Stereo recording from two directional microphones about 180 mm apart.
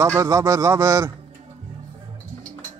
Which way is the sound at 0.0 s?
15° right (ahead or behind).